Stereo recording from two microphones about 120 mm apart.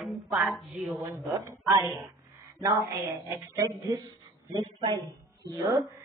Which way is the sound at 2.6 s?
25° right (ahead or behind).